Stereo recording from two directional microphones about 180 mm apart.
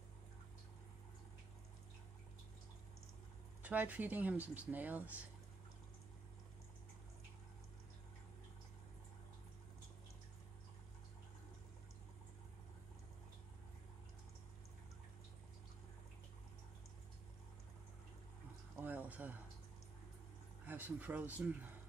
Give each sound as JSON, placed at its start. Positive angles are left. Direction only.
{"t": 3.6, "sound": "speech", "side_deg": -10}
{"t": 18.8, "sound": "a sound", "side_deg": -10}
{"t": 20.6, "sound": "speech", "side_deg": -10}